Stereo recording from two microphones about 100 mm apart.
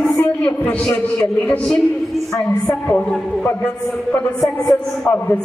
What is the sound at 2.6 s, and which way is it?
A man's voice, 15° left (ahead or behind).